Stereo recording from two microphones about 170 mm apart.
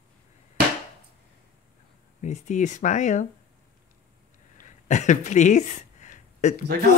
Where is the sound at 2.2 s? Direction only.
45° left (ahead or behind).